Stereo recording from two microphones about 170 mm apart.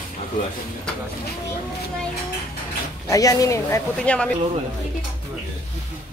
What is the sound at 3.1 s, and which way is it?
Speech, 20° left (ahead or behind).